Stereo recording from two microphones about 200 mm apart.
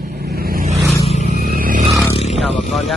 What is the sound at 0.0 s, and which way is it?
Vehicle, 50° right (ahead or behind).